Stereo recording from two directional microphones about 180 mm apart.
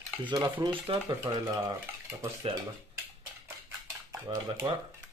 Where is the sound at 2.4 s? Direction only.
30° right (ahead or behind).